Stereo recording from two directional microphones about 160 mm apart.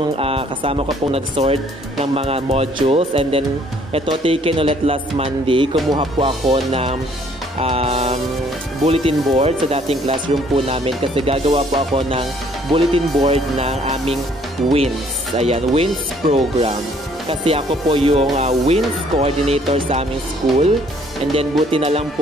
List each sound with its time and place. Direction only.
0.2 s speech: 35° right (ahead or behind)
15.3 s speech: 40° right (ahead or behind)
21.4 s speech: 35° right (ahead or behind)